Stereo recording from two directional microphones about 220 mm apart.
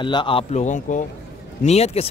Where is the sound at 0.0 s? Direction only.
20° left (ahead or behind).